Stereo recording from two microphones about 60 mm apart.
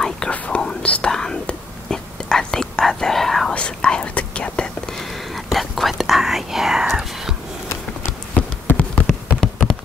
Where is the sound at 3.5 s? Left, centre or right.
Centre.